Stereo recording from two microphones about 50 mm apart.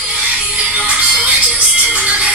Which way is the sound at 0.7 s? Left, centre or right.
Right.